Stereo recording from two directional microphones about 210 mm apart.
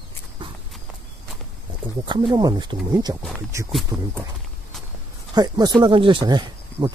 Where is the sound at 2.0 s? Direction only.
20° right (ahead or behind).